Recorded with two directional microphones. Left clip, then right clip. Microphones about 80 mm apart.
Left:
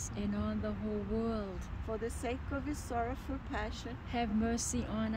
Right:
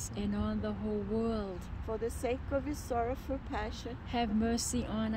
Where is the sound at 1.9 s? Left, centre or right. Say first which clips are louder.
Right 3 dB; right.